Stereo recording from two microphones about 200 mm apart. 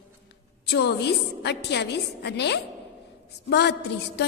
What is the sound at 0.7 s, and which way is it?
A woman's voice, 55° left (ahead or behind).